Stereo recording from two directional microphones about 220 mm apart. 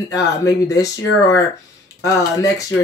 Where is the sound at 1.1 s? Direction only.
65° left (ahead or behind).